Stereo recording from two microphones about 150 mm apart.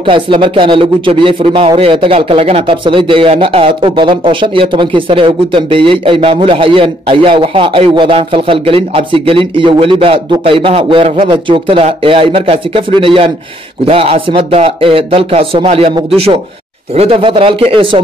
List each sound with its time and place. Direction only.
0.0 s speech: 35° right (ahead or behind)
16.9 s speech: 40° right (ahead or behind)